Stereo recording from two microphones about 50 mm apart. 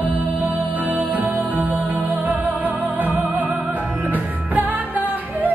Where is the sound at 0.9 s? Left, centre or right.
Right.